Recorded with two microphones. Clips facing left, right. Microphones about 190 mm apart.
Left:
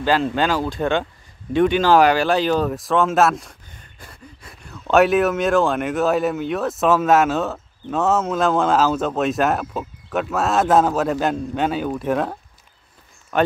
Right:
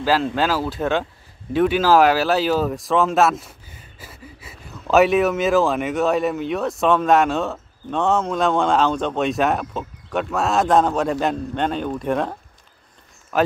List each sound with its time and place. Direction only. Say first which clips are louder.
0.0 s speech: left 1 dB; centre (ahead or behind)